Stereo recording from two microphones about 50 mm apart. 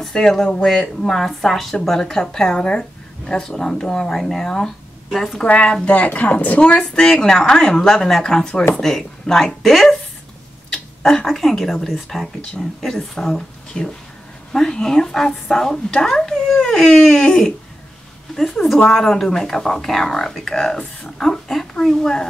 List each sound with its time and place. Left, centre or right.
0.1 s speech: centre
5.4 s speech: left
7.0 s speech: centre
11.1 s speech: centre
18.9 s speech: centre